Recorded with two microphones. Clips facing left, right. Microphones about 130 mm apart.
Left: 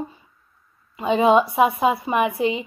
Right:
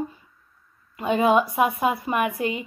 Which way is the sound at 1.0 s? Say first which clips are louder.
Left 3 dB; 25° left (ahead or behind).